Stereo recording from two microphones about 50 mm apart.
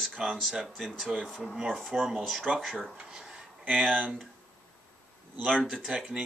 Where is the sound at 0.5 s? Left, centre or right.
Centre.